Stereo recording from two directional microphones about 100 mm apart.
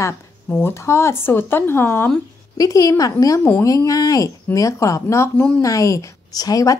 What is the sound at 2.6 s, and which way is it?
Speech, 35° left (ahead or behind).